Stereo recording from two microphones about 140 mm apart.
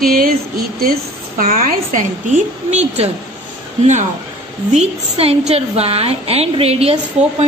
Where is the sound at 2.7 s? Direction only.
55° right (ahead or behind).